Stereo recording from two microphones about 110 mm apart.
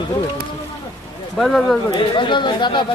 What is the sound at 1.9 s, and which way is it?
Speech, 45° left (ahead or behind).